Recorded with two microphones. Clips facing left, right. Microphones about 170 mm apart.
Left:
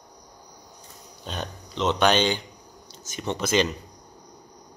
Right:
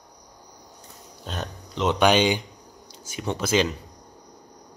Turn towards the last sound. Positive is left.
turn(degrees=-5)  # may be behind; listen again after turning